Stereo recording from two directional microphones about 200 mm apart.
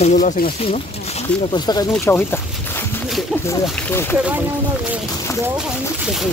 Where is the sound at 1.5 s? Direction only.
20° left (ahead or behind).